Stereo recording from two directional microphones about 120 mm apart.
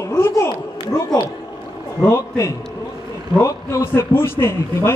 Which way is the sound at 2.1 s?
25° left (ahead or behind).